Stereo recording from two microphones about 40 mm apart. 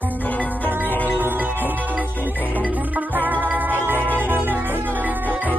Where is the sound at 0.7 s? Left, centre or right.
Right.